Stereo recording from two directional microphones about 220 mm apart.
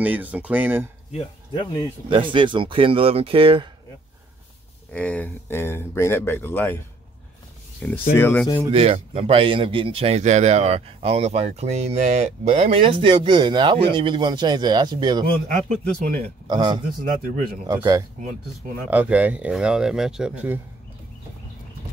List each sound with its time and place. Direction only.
0.0 s speech: 5° right (ahead or behind)
1.1 s speech: 25° left (ahead or behind)
2.0 s a man's voice: 20° right (ahead or behind)
4.9 s speech: 5° left (ahead or behind)
7.8 s speech: 5° left (ahead or behind)
8.6 s a man's voice: 25° right (ahead or behind)
15.4 s speech: 35° right (ahead or behind)
16.4 s a man's voice: 20° right (ahead or behind)
16.8 s speech: 40° right (ahead or behind)
17.6 s speech: 15° right (ahead or behind)